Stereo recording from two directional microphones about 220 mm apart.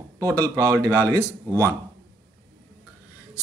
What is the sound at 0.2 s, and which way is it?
Speech, 15° right (ahead or behind).